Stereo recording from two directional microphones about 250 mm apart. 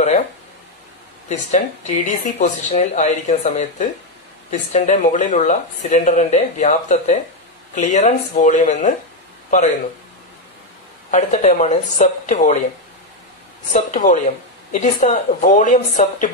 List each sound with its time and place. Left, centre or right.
1.3 s speech: left
11.1 s speech: left
13.7 s speech: left